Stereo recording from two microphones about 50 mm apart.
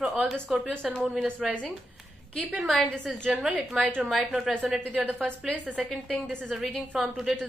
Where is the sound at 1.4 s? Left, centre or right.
Centre.